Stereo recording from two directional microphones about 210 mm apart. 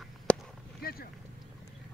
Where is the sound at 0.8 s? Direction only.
45° left (ahead or behind).